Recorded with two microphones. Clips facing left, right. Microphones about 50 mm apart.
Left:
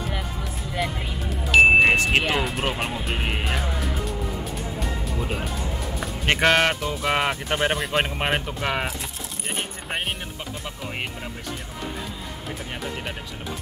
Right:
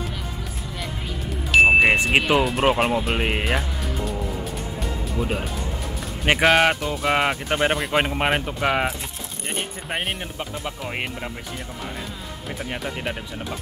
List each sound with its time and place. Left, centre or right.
1.5 s vehicle: centre
2.1 s speech: centre
3.5 s music: centre
6.2 s speech: centre